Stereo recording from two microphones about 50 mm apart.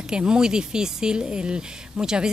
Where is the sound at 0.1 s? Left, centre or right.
Centre.